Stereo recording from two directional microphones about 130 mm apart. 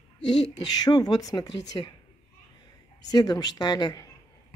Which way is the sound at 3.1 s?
30° left (ahead or behind).